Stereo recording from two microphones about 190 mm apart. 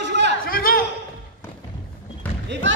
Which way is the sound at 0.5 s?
50° left (ahead or behind).